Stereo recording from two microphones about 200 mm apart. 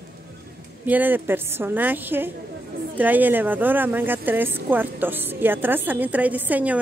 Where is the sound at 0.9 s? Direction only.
10° right (ahead or behind).